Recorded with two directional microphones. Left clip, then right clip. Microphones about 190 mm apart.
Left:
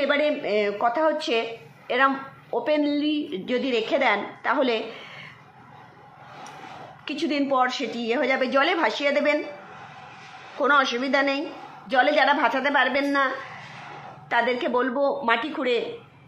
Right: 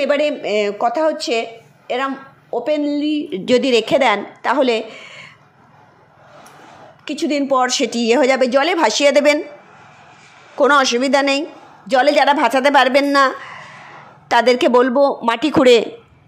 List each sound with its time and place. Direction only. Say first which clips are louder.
0.0 s speech: right 6 dB; 35° right (ahead or behind)
3.4 s a woman's voice: right 11 dB; 50° right (ahead or behind)
7.1 s a woman's voice: right 7 dB; 40° right (ahead or behind)
10.6 s a woman's voice: right 8 dB; 45° right (ahead or behind)
14.3 s speech: right 10 dB; 55° right (ahead or behind)